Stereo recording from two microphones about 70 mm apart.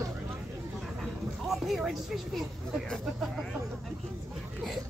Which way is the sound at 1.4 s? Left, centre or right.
Centre.